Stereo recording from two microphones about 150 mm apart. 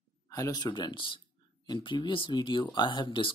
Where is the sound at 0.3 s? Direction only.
25° left (ahead or behind).